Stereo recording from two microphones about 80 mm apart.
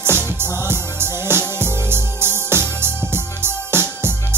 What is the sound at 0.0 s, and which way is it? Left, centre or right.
Music, right.